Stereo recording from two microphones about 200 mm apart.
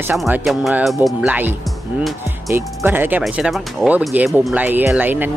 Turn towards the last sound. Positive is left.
turn(degrees=-10)  # may be behind; listen again after turning